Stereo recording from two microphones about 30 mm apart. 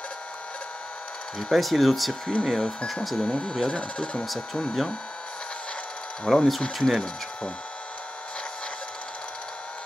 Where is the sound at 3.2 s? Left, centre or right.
Left.